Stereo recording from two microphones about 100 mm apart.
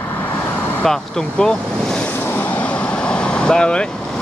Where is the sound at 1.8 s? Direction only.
5° left (ahead or behind).